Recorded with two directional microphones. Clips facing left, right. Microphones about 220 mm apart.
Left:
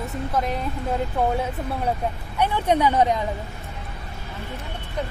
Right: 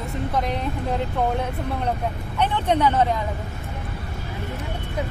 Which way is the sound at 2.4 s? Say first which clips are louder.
Even; 10° left (ahead or behind).